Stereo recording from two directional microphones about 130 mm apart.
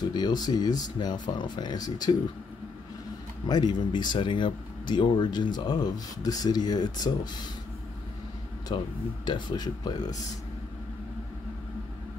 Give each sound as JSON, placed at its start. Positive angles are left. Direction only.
{"t": 0.1, "sound": "speech", "side_deg": 30}
{"t": 3.4, "sound": "speech", "side_deg": 35}
{"t": 8.7, "sound": "speech", "side_deg": 40}